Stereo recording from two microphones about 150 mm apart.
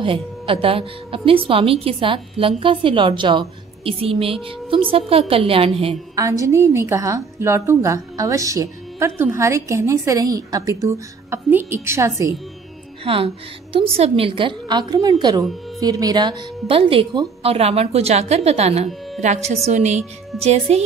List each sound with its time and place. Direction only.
0.0 s a woman's voice: 35° right (ahead or behind)
6.1 s a woman's voice: 20° right (ahead or behind)
13.0 s a woman's voice: 40° right (ahead or behind)
17.5 s speech: 45° right (ahead or behind)